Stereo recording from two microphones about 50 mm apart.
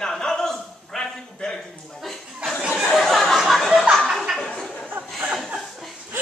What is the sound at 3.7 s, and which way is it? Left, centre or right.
Chuckle, centre.